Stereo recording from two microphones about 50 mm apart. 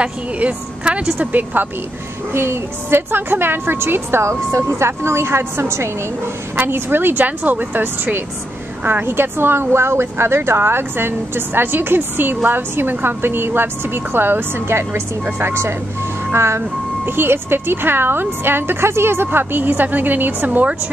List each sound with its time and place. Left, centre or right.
0.0 s speech: right
1.2 s speech: right
2.3 s a woman's voice: right
6.5 s speech: right
15.2 s speech: right
16.3 s a woman's voice: right
17.0 s speech: right